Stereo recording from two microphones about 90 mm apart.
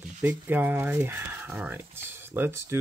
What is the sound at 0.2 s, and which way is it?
Speech, 20° right (ahead or behind).